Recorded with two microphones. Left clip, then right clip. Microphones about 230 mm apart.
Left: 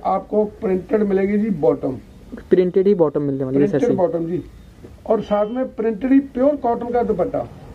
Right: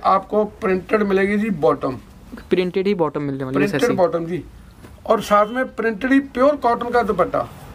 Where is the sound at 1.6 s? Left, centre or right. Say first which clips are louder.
Even; right.